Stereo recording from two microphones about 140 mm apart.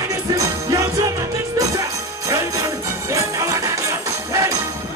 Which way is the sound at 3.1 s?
25° right (ahead or behind).